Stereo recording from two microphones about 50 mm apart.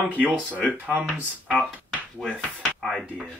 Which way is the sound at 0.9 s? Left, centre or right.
Right.